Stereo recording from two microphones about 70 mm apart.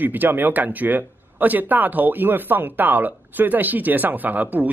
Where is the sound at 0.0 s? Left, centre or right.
Right.